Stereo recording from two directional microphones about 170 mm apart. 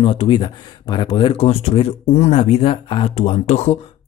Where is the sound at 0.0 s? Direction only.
35° left (ahead or behind).